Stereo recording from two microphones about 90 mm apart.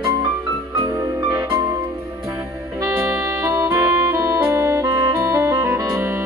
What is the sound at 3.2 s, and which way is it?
Music, 30° right (ahead or behind).